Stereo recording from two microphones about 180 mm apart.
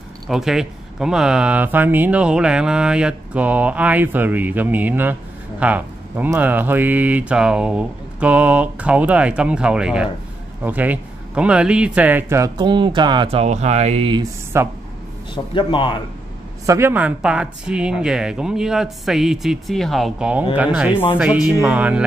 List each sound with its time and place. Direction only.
0.3 s a man's voice: centre (ahead or behind); by 14.2 s 30° right (ahead or behind)
14.5 s speech: 15° right (ahead or behind)
15.3 s speech: 25° left (ahead or behind)
16.6 s speech: 15° right (ahead or behind)